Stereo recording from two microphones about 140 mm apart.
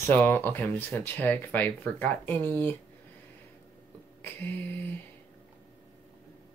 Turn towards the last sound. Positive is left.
turn(degrees=15)  # may be behind; listen again after turning